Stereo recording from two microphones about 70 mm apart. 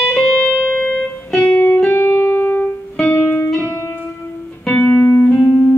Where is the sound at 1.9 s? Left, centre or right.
Left.